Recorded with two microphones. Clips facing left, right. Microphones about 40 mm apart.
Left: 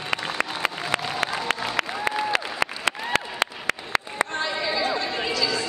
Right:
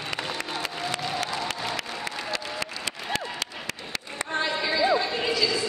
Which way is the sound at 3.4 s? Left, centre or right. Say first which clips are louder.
Left 8 dB; left.